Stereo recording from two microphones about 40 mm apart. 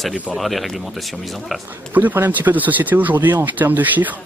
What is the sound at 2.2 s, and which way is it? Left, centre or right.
Speech, right.